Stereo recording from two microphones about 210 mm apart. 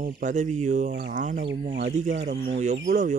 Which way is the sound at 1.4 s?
55° right (ahead or behind).